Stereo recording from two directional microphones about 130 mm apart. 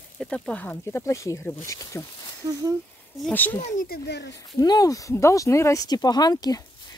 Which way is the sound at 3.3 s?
10° left (ahead or behind).